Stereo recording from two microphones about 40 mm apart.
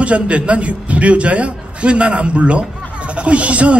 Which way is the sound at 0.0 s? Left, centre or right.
Right.